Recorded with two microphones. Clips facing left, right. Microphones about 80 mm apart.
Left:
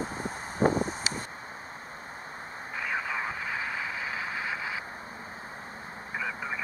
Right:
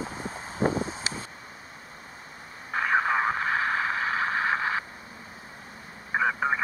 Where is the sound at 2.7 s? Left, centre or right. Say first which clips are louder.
Right 8 dB; right.